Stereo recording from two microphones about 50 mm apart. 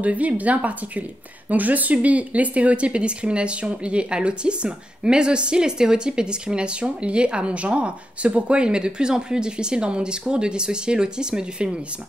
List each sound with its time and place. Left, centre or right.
0.0 s speech: right